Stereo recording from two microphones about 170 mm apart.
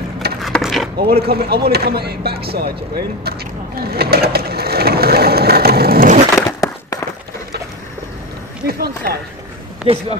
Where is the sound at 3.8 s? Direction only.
65° right (ahead or behind).